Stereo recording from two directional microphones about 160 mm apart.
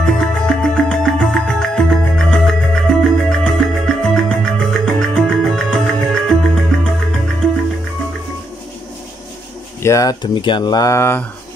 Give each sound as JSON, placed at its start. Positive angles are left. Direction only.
{"t": 0.0, "sound": "music", "side_deg": 5}
{"t": 9.8, "sound": "speech", "side_deg": 20}